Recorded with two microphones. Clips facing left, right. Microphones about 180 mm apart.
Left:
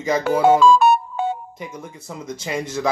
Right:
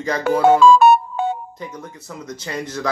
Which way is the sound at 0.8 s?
60° right (ahead or behind).